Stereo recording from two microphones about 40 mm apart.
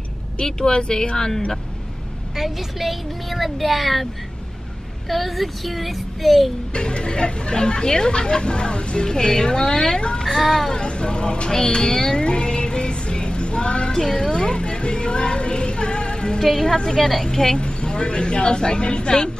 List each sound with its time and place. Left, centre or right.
0.4 s speech: centre
2.3 s speech: centre
6.7 s speech: left
10.2 s speech: centre
10.7 s music: left
16.3 s a woman's voice: centre
17.6 s speech: left